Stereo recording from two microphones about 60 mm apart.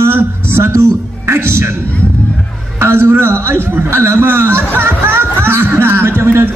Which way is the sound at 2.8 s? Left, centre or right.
Right.